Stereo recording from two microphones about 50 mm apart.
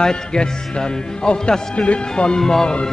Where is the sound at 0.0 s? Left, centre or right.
Centre.